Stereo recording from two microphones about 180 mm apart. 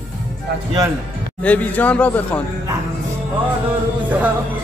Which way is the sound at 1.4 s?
10° left (ahead or behind).